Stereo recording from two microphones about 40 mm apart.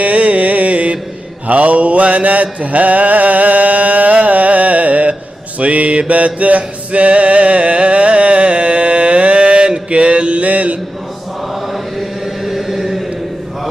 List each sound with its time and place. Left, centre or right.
0.0 s music: right
1.5 s mantra: right
5.6 s music: right
11.7 s chant: centre